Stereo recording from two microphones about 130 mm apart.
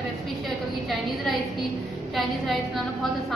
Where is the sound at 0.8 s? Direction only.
Centre (ahead or behind).